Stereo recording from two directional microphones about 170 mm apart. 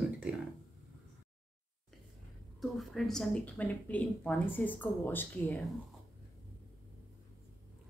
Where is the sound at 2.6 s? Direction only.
Centre (ahead or behind).